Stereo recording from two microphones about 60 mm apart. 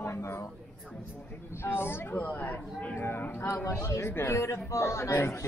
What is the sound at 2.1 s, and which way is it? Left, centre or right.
Speech, left.